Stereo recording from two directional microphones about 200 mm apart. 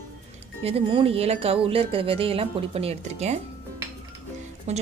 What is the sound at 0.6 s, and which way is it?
Speech, 25° right (ahead or behind).